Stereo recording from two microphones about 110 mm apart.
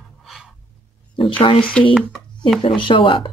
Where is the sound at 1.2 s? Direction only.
50° left (ahead or behind).